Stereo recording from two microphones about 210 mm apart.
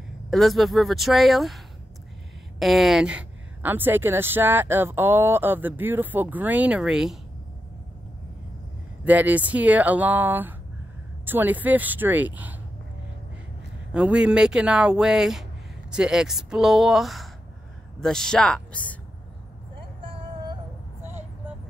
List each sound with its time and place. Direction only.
0.3 s speech: centre (ahead or behind)
2.6 s a woman's voice: centre (ahead or behind)
9.0 s a woman's voice: 5° right (ahead or behind)
13.9 s speech: 5° right (ahead or behind)